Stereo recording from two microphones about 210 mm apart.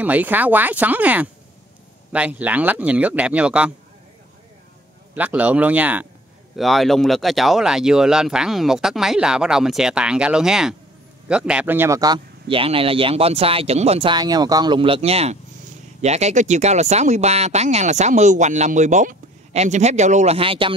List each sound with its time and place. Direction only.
0.0 s speech: 5° right (ahead or behind)
5.1 s speech: 5° right (ahead or behind); by 20.7 s 25° right (ahead or behind)